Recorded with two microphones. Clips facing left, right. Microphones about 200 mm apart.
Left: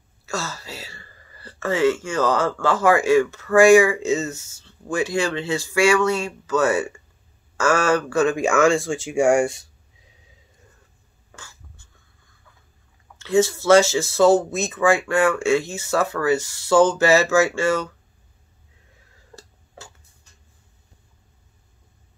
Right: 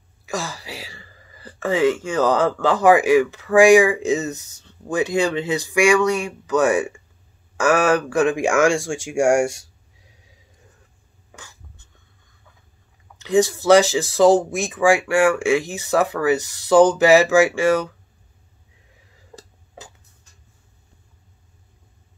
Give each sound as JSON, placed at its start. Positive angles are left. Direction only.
{"t": 0.2, "sound": "a sound", "side_deg": -15}
{"t": 2.6, "sound": "speech", "side_deg": -15}
{"t": 11.3, "sound": "writing", "side_deg": -20}
{"t": 13.2, "sound": "speech", "side_deg": -15}
{"t": 19.3, "sound": "tick-tock", "side_deg": -15}